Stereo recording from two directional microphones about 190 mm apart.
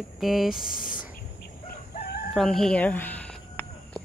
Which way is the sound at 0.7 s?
45° left (ahead or behind).